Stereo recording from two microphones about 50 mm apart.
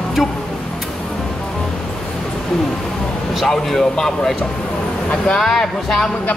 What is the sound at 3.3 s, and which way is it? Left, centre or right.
Speech, centre.